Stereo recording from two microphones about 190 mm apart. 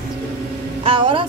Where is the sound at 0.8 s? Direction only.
30° right (ahead or behind).